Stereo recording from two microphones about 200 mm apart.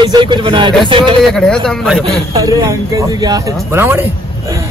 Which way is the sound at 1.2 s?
5° left (ahead or behind).